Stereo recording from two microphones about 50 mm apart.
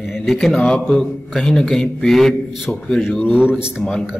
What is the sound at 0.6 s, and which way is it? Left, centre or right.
Mantra, centre.